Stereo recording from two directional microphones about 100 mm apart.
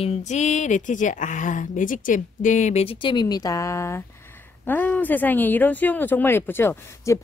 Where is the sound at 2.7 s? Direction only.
65° left (ahead or behind); by 4.0 s 30° left (ahead or behind).